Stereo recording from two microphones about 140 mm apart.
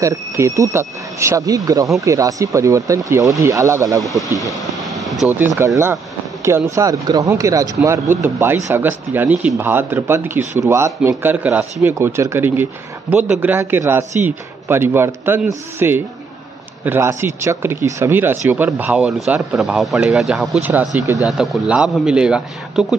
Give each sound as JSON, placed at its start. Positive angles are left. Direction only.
{"t": 0.0, "sound": "speech", "side_deg": -25}
{"t": 4.4, "sound": "air conditioning", "side_deg": 0}
{"t": 5.6, "sound": "a man's voice", "side_deg": -15}